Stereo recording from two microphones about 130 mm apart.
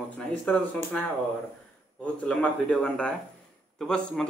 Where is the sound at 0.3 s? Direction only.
10° left (ahead or behind).